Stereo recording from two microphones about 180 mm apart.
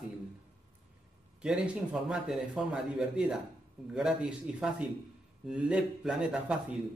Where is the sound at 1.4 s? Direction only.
5° right (ahead or behind).